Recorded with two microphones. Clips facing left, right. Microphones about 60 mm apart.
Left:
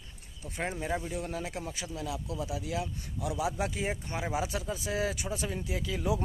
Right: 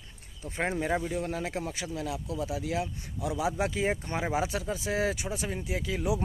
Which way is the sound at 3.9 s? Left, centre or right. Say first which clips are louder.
Right 3 dB; right.